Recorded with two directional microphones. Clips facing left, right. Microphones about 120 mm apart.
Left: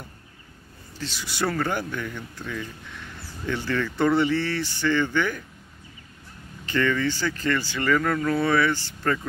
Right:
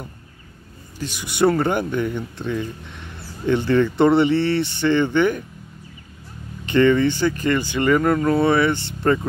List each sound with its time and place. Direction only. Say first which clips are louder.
0.9 s speech: right 5 dB; 15° right (ahead or behind)
6.6 s speech: right 8 dB; 20° right (ahead or behind)